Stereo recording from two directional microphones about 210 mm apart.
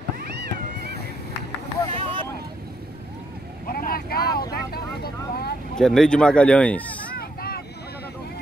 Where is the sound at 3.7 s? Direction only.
45° left (ahead or behind).